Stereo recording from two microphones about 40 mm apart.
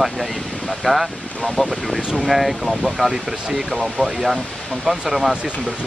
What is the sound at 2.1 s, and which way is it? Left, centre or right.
Speech, centre.